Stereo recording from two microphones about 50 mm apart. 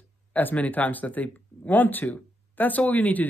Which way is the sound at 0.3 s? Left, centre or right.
Left.